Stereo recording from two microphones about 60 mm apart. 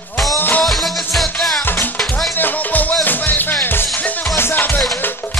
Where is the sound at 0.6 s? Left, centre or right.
Centre.